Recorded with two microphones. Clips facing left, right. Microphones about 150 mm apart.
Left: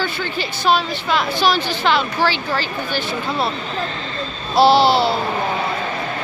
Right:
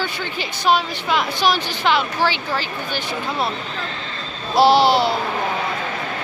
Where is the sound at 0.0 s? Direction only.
15° right (ahead or behind).